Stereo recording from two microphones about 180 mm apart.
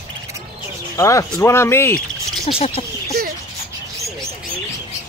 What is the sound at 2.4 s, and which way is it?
Speech, 30° left (ahead or behind).